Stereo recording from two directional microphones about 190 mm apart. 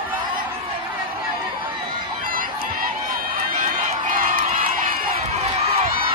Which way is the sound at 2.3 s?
50° right (ahead or behind).